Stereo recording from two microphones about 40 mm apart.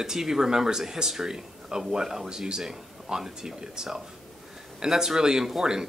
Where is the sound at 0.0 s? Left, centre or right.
Centre.